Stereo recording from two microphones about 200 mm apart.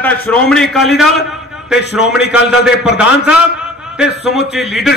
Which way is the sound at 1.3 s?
5° right (ahead or behind).